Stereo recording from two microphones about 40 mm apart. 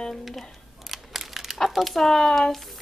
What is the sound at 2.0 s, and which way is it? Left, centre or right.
Speech, centre.